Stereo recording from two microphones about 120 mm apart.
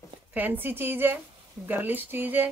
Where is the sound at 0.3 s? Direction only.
15° right (ahead or behind).